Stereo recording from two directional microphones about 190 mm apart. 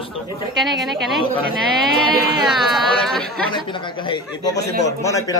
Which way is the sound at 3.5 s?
25° left (ahead or behind).